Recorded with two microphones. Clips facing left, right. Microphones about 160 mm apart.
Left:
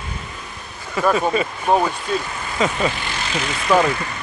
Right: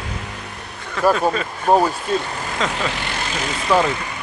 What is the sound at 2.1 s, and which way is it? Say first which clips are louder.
Speech: right 2 dB; 30° right (ahead or behind).